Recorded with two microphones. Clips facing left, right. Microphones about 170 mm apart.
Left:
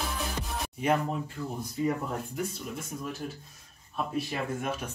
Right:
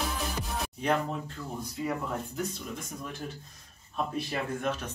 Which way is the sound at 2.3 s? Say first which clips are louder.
Left 1 dB; 5° left (ahead or behind).